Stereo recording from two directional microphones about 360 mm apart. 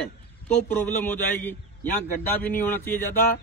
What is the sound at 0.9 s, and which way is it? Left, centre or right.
Speech, centre.